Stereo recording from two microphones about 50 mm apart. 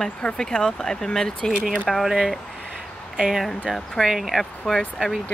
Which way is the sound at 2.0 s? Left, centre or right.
Centre.